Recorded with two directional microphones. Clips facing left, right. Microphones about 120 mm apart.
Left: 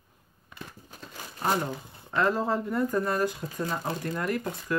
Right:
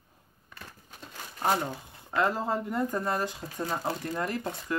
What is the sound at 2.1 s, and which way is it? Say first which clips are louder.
Speech: left 2 dB; 20° right (ahead or behind).